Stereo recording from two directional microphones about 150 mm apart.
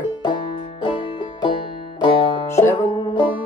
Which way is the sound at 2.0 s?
35° left (ahead or behind).